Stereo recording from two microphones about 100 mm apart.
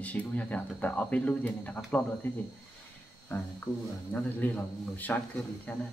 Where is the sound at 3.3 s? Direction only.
20° left (ahead or behind).